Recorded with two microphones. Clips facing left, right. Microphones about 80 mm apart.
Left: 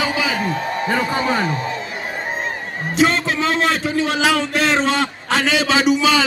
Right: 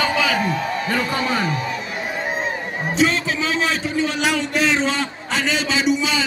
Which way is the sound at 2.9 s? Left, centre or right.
Left.